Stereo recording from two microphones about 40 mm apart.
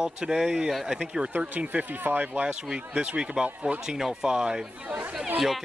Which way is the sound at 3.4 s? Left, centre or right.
Right.